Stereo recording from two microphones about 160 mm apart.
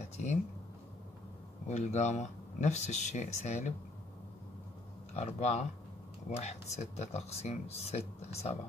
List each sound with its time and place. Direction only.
1.7 s speech: 45° left (ahead or behind)
5.1 s speech: 45° left (ahead or behind)